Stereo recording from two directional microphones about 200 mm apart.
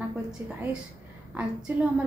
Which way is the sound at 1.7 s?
10° right (ahead or behind).